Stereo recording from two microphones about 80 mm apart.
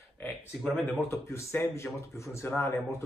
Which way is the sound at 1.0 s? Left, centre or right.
Left.